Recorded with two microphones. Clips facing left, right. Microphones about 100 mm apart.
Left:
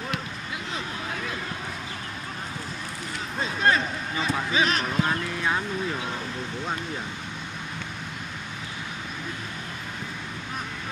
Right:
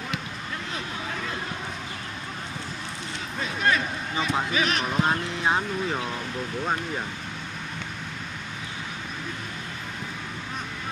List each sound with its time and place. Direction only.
3.3 s a sound: 30° left (ahead or behind)
4.5 s speech: 30° left (ahead or behind)
4.9 s speech: 25° right (ahead or behind)